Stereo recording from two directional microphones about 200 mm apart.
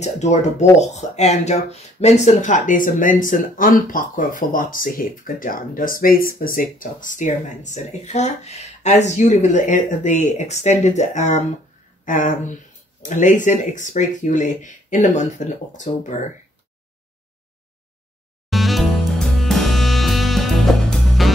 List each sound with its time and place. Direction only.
0.0 s speech: 35° left (ahead or behind)
18.5 s music: centre (ahead or behind)